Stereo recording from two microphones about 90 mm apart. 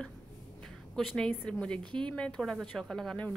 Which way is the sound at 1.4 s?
10° left (ahead or behind).